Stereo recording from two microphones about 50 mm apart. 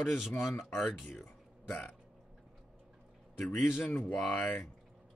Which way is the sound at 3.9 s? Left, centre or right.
Left.